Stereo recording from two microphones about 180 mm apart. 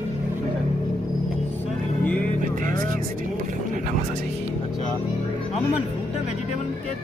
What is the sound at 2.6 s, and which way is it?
Speech, 50° right (ahead or behind).